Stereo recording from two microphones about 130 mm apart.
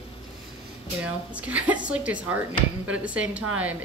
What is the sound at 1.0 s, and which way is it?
Speech, 10° right (ahead or behind).